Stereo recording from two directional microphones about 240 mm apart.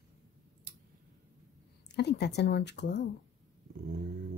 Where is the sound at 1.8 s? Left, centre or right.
Left.